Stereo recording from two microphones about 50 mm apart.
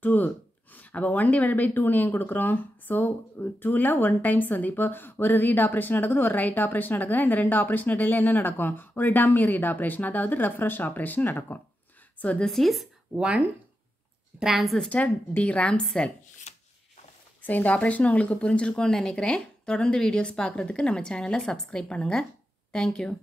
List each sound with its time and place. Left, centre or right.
0.0 s speech: left
12.4 s a woman's voice: centre
13.1 s speech: centre
14.4 s speech: centre
14.9 s speech: left
17.4 s speech: left; by 23.1 s centre